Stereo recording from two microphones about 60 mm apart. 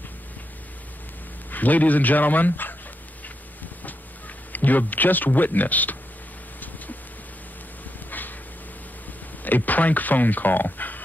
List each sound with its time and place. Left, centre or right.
1.5 s speech: left
4.5 s speech: left
9.4 s speech: left